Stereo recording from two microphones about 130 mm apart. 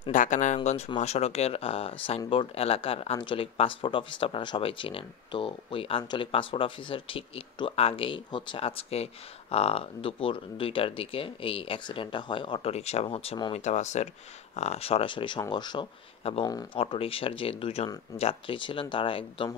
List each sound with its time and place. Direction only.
0.1 s speech: 80° left
0.9 s speech: 55° left (ahead or behind)
13.5 s speech: 60° left (ahead or behind); by 15.9 s 35° left (ahead or behind)
16.2 s speech: 45° left (ahead or behind)